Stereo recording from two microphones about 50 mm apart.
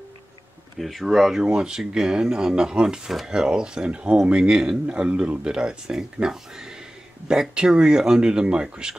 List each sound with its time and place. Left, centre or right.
0.7 s speech: centre
1.4 s speech: centre